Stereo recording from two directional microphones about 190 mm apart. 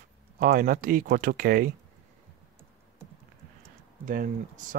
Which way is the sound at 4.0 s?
45° right (ahead or behind).